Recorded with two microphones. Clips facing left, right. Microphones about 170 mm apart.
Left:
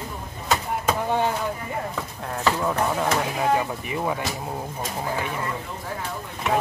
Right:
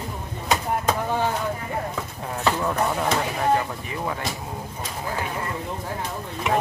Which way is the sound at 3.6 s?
15° left (ahead or behind).